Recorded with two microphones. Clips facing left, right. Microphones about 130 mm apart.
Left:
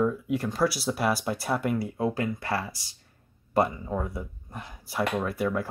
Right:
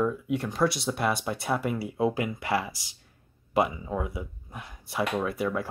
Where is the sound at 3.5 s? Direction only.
5° right (ahead or behind).